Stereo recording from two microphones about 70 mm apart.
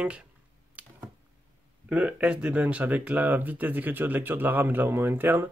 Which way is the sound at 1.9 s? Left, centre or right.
Right.